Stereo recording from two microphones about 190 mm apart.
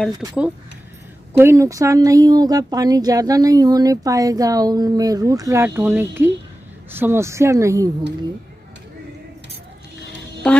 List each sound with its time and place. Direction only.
0.1 s speech: 20° right (ahead or behind)
1.4 s speech: 15° right (ahead or behind)
10.4 s music: 5° left (ahead or behind)